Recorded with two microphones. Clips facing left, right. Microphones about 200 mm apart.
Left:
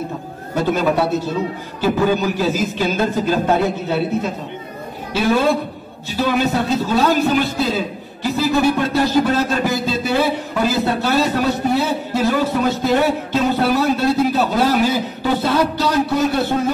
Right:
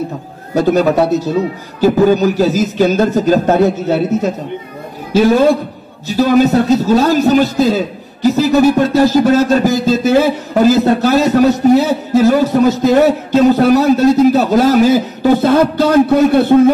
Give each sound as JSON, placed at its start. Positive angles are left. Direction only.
{"t": 0.6, "sound": "a man's voice", "side_deg": -40}